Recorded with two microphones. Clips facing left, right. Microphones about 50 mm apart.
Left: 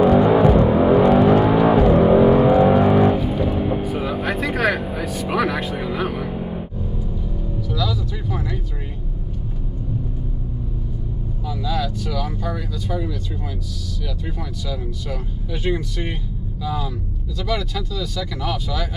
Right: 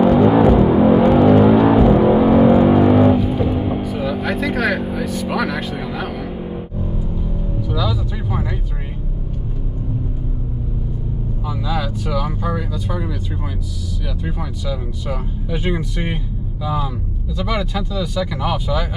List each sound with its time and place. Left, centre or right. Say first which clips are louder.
0.0 s a sound: right 1 dB; centre
0.7 s vehicle: right 2 dB; centre
1.3 s a sound: right 3 dB; centre
2.0 s vehicle: even; centre
2.7 s music: right 3 dB; centre
3.8 s vehicle: right 2 dB; centre
4.7 s vehicle: right 3 dB; centre
5.0 s vehicle: right 1 dB; centre
6.3 s music: even; centre
7.6 s music: right 2 dB; centre
11.4 s vehicle: right 1 dB; centre
14.2 s vehicle: right 4 dB; centre
16.6 s speech: right 3 dB; centre